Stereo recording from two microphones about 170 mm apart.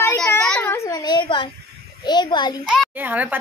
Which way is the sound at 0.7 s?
20° left (ahead or behind).